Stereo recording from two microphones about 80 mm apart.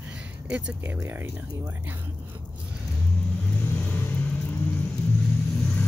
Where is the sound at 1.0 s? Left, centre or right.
Right.